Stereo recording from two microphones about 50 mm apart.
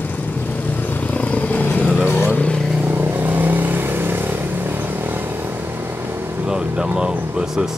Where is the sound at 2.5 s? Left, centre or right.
Centre.